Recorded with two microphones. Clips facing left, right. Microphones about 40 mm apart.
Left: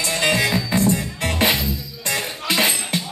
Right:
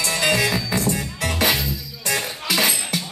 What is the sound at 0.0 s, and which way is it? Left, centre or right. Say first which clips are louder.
Music: even; centre.